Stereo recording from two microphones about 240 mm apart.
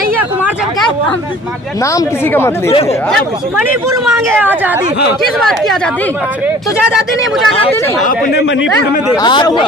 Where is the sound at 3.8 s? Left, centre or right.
Centre.